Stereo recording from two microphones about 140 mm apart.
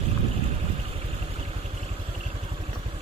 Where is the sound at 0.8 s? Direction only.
45° right (ahead or behind).